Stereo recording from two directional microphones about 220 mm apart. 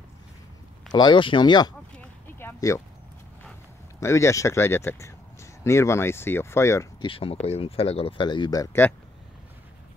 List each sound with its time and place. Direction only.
0.9 s speech: 20° left (ahead or behind)
2.0 s a sound: 10° left (ahead or behind)
4.0 s speech: 10° left (ahead or behind)